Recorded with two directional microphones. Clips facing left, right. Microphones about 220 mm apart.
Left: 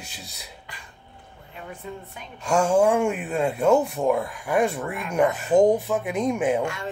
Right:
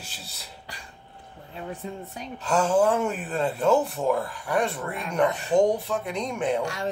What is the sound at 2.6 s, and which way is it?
Speech, 10° left (ahead or behind).